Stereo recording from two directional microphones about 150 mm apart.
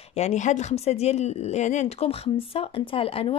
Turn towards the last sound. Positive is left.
turn(degrees=40)  # may be behind; listen again after turning